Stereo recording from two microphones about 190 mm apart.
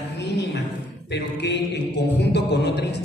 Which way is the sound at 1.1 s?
65° left (ahead or behind).